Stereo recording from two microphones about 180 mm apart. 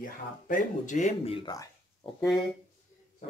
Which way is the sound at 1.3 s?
25° left (ahead or behind).